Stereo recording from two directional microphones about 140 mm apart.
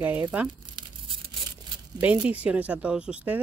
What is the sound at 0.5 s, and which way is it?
Crumpling, 35° right (ahead or behind).